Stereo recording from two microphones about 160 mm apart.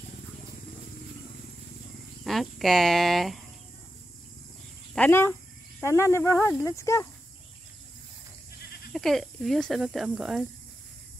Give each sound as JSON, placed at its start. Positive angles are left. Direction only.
{"t": 2.2, "sound": "speech", "side_deg": 0}
{"t": 4.9, "sound": "speech", "side_deg": 10}
{"t": 8.9, "sound": "speech", "side_deg": 0}